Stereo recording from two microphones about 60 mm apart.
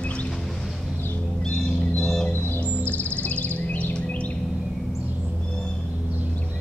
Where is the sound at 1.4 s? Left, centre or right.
Centre.